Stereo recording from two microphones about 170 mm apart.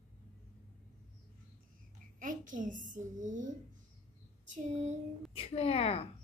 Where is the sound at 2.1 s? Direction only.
50° right (ahead or behind).